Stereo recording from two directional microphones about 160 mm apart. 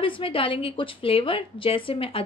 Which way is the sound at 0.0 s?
35° left (ahead or behind).